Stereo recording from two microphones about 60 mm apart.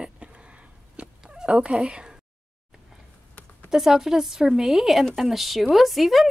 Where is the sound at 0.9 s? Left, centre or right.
Centre.